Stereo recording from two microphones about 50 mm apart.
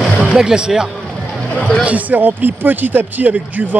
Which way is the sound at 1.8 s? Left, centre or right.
Right.